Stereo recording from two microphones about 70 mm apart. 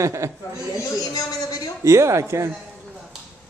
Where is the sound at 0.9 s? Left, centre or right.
Left.